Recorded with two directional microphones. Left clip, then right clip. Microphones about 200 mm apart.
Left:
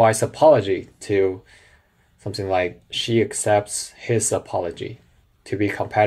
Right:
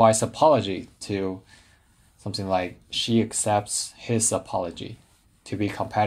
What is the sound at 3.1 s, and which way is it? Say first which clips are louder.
Speech: left 6 dB; 40° right (ahead or behind).